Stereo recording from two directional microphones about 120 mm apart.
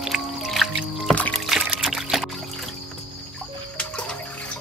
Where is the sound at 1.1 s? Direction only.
10° left (ahead or behind).